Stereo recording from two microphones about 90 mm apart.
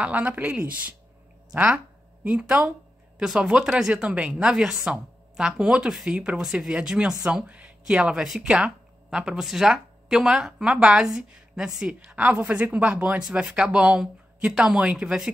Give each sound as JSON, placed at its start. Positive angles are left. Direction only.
{"t": 0.0, "sound": "speech", "side_deg": -15}